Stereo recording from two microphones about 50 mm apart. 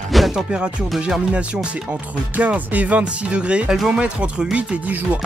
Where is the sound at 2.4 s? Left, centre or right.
Right.